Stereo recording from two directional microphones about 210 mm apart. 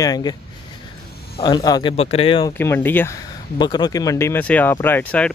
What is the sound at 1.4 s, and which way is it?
Speech, 20° left (ahead or behind).